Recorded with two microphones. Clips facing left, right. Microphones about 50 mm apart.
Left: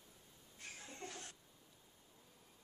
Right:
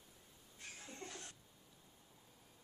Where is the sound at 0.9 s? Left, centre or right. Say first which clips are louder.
Left 1 dB; centre.